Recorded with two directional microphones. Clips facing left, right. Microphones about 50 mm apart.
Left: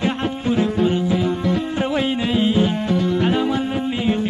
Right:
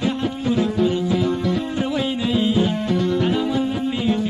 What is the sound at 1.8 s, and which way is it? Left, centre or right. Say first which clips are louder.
Music: left 2 dB; left.